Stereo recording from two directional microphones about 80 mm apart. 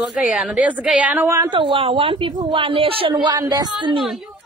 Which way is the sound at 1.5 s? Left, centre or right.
Right.